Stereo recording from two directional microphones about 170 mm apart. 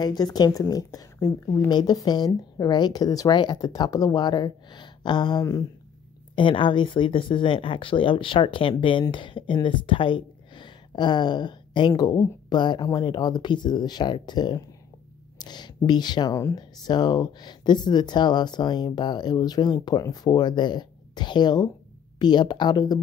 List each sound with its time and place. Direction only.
0.0 s speech: 25° left (ahead or behind)